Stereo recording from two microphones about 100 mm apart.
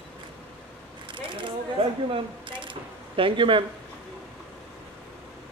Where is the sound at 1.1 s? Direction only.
55° right (ahead or behind).